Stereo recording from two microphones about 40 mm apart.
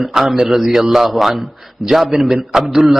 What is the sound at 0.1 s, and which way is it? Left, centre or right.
A man's voice, centre.